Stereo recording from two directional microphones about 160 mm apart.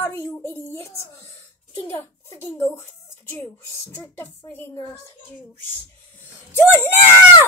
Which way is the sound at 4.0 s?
10° left (ahead or behind).